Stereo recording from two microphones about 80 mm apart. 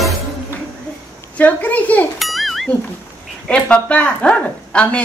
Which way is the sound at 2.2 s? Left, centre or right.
Centre.